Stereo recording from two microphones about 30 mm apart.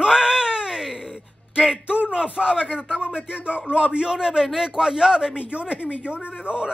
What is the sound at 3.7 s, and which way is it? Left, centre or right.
Wail, right.